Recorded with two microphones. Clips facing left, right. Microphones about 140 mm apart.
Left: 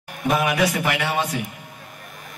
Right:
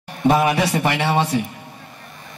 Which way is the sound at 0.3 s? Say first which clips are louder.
Right 3 dB; 30° right (ahead or behind).